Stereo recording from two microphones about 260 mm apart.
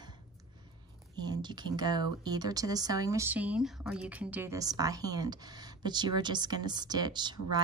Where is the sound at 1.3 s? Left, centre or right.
Centre.